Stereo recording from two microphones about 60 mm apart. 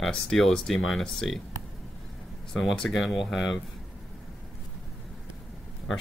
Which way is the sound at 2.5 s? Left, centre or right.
Centre.